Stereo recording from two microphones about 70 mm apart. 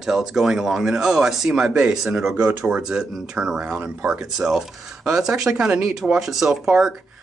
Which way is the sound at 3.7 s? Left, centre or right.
Right.